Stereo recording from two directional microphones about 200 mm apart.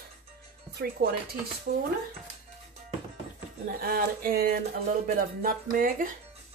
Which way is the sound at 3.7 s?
45° right (ahead or behind).